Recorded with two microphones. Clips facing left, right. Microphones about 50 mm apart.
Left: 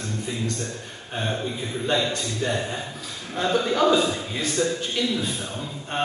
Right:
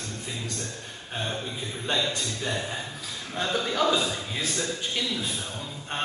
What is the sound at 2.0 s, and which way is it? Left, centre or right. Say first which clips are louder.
Speech: left 3 dB; centre.